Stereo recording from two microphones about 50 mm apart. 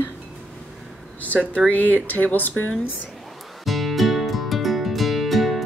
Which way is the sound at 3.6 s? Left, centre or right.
Centre.